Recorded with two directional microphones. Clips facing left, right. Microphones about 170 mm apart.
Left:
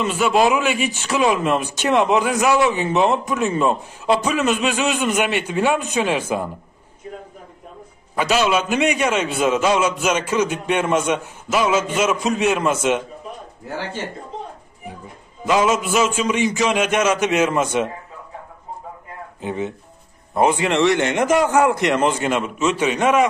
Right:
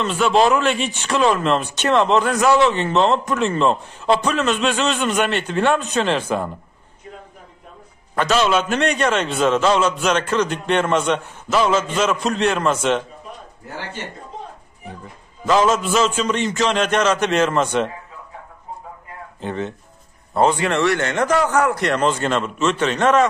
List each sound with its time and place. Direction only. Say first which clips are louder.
0.0 s speech: right 1 dB; 5° left (ahead or behind)
8.2 s speech: right 1 dB; 10° left (ahead or behind)
15.4 s speech: right 1 dB; 10° left (ahead or behind)
19.4 s speech: left 1 dB; 10° left (ahead or behind)